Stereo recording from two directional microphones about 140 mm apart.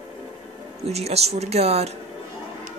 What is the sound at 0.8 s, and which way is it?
Speech, 50° right (ahead or behind).